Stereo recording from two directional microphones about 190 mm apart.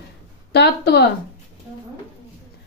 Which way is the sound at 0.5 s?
65° left (ahead or behind).